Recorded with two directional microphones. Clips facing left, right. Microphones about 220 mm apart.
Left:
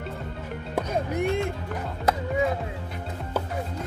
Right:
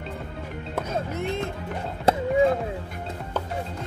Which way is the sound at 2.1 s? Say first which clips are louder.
Right 4 dB; 30° right (ahead or behind).